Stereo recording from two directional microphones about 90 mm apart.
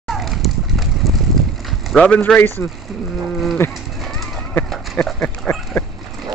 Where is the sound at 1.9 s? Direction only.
10° left (ahead or behind); by 3.8 s 25° left (ahead or behind).